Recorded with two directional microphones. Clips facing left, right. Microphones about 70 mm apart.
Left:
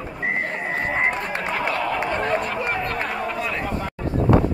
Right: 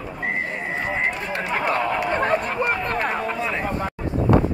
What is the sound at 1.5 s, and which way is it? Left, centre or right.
Run, right.